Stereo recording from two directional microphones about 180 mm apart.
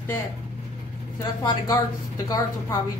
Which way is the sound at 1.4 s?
20° left (ahead or behind).